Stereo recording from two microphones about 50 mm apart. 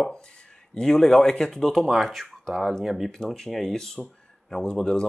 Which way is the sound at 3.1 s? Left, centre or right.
Centre.